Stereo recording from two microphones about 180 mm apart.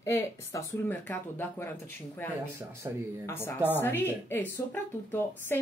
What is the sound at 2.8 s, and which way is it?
Speech, 20° right (ahead or behind).